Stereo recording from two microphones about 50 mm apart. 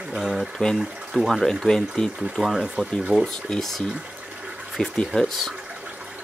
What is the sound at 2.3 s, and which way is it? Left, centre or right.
Speech, centre.